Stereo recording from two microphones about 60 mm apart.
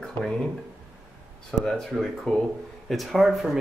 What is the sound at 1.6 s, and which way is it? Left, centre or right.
Speech, centre.